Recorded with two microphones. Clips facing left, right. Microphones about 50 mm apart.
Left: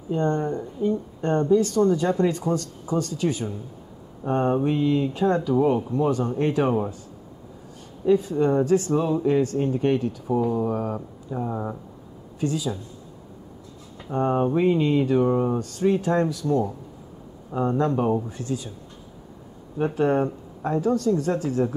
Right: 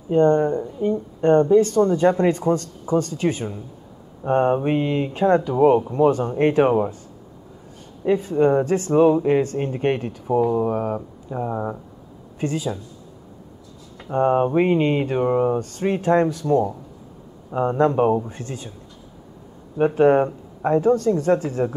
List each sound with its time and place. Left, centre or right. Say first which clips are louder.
0.1 s speech: right 7 dB; right
8.0 s speech: right 2 dB; right
11.0 s speech: right 2 dB; centre
12.4 s speech: right 1 dB; right
13.9 s speech: right 5 dB; right
19.8 s speech: right 6 dB; right